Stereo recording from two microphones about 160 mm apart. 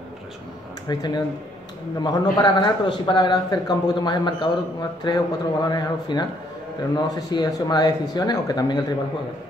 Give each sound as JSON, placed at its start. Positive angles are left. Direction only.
{"t": 0.8, "sound": "a man's voice", "side_deg": 25}